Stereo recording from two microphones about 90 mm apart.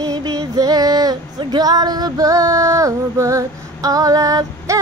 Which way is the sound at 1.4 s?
50° right (ahead or behind).